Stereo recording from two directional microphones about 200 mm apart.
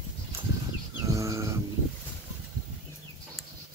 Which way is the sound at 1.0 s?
15° right (ahead or behind).